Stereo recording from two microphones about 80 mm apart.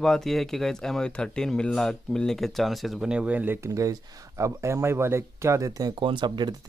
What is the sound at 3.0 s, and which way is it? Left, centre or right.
Speech, centre.